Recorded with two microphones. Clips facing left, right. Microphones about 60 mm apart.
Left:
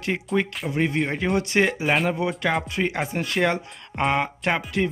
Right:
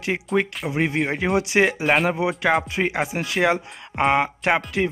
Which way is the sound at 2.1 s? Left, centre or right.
Centre.